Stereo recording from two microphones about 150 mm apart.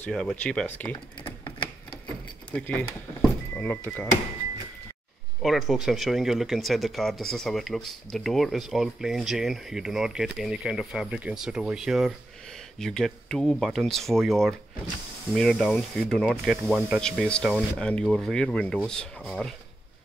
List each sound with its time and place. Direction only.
0.0 s speech: 5° left (ahead or behind)
1.2 s a sound: 35° left (ahead or behind)
2.5 s speech: 10° left (ahead or behind)
5.4 s speech: centre (ahead or behind)